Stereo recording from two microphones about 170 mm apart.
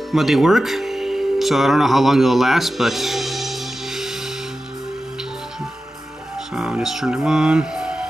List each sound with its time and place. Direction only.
0.1 s music: centre (ahead or behind)
6.3 s music: 5° right (ahead or behind)